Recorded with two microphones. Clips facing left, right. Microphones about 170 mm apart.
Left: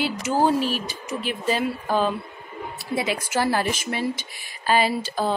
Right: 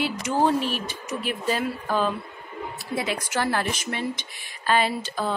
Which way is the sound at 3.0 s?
5° left (ahead or behind).